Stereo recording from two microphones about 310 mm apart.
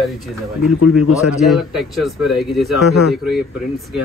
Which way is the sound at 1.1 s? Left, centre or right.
Centre.